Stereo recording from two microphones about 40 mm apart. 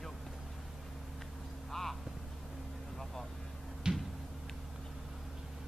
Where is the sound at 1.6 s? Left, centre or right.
Centre.